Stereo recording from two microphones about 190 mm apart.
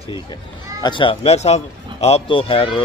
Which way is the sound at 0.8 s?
25° left (ahead or behind).